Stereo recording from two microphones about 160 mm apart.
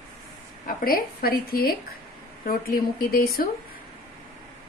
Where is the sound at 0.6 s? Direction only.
65° left (ahead or behind).